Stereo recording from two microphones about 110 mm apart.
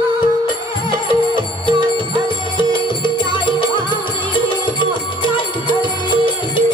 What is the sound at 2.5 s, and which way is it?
Music, 50° left (ahead or behind).